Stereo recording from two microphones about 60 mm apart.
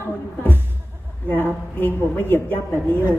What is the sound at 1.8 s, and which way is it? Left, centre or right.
Speech, left.